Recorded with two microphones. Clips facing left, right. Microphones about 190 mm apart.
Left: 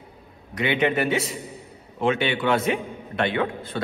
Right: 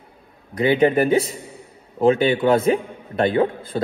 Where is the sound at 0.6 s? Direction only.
35° right (ahead or behind).